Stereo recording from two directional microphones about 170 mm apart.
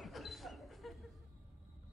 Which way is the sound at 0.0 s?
Centre (ahead or behind).